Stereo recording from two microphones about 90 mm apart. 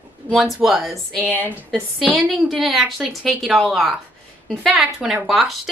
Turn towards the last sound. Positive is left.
turn(degrees=-5)  # may be behind; listen again after turning